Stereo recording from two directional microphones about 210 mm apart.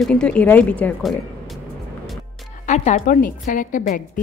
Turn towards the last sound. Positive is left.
turn(degrees=40)  # may be behind; listen again after turning